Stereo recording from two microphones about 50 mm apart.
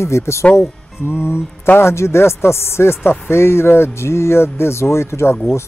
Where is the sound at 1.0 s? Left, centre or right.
Left.